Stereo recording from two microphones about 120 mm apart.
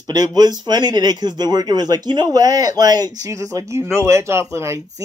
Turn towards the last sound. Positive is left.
turn(degrees=-25)  # may be behind; listen again after turning